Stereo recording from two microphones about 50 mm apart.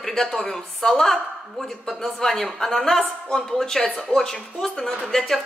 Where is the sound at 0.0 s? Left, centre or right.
Centre.